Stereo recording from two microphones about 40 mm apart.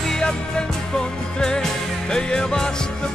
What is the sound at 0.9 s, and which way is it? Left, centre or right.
Music, centre.